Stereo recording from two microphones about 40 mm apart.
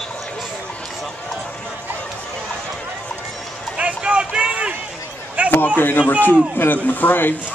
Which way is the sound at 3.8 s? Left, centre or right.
Right.